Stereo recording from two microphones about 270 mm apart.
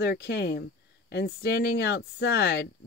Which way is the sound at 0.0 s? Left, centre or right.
Left.